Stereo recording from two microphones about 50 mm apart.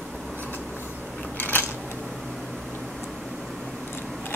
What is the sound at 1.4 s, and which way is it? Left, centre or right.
Scissors, left.